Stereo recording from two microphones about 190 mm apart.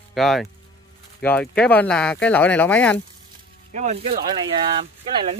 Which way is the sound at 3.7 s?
35° right (ahead or behind).